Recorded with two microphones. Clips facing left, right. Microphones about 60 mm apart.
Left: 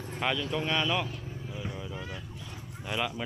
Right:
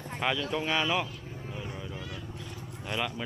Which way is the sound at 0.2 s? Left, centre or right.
Centre.